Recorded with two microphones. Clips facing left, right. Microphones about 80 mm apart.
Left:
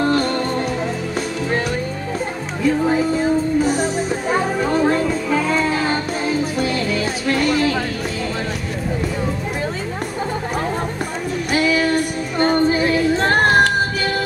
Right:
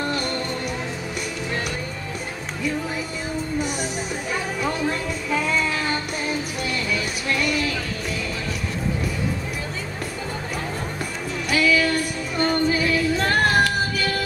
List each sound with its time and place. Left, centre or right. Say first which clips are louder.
2.6 s speech: left 10 dB; left
3.6 s music: left 8 dB; left
11.5 s music: left 3 dB; left
12.4 s female singing: left 5 dB; left